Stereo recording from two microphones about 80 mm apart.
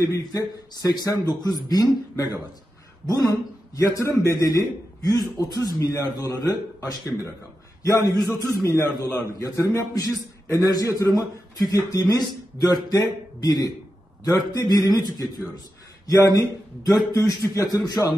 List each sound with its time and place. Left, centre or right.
0.1 s a man's voice: left
10.8 s a man's voice: left